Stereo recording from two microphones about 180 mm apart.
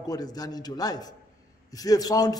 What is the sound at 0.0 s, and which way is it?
A man's voice, 20° left (ahead or behind).